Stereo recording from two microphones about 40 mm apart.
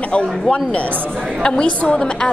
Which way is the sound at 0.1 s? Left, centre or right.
Left.